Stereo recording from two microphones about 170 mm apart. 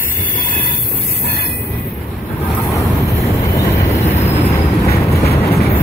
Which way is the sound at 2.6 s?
15° left (ahead or behind).